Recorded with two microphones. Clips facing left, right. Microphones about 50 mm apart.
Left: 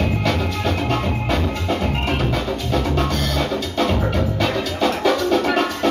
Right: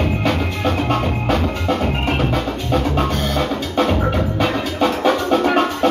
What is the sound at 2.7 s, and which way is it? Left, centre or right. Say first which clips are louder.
Music: right 3 dB; centre.